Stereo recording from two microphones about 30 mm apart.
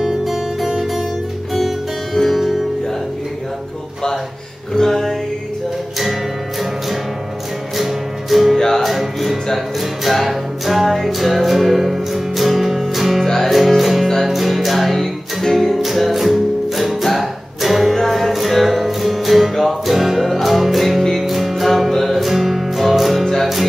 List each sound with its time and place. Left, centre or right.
0.0 s music: centre
2.3 s music: centre
4.7 s music: centre
7.7 s music: centre
8.5 s music: centre
8.8 s music: centre
22.2 s music: centre